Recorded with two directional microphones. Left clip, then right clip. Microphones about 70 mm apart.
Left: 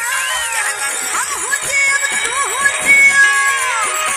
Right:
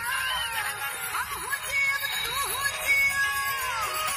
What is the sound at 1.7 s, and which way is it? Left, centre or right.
Music, left.